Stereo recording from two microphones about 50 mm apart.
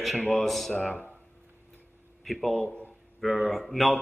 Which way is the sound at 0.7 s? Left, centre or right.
Left.